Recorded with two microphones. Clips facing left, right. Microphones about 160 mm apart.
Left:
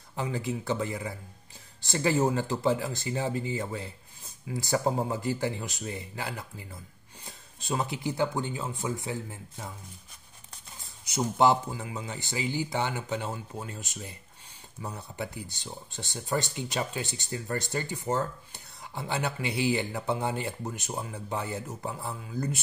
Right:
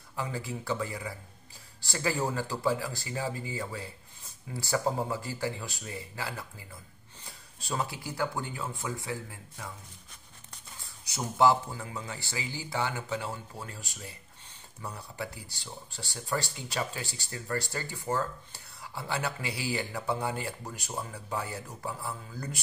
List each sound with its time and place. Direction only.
0.1 s speech: 20° left (ahead or behind)
11.1 s speech: 20° left (ahead or behind)